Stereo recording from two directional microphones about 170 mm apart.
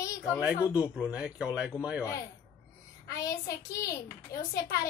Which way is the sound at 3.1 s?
20° left (ahead or behind).